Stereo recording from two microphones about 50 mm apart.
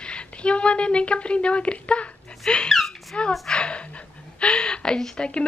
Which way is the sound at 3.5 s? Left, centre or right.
Centre.